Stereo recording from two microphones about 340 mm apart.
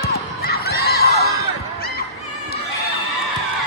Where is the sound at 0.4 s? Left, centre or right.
Left.